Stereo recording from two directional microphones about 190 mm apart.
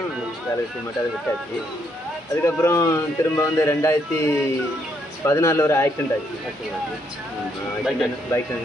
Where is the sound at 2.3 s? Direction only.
15° left (ahead or behind).